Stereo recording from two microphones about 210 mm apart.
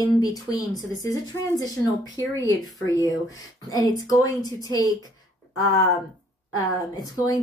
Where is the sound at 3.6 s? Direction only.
15° left (ahead or behind).